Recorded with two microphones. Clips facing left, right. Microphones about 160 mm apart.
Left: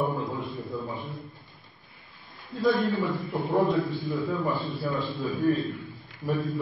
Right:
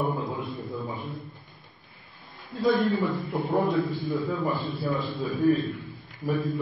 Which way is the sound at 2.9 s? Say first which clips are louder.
Right 1 dB; 20° right (ahead or behind).